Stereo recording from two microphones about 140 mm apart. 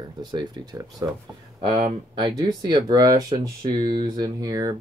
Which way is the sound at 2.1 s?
35° right (ahead or behind).